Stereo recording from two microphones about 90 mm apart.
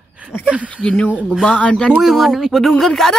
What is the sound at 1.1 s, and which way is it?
Speech, 10° right (ahead or behind).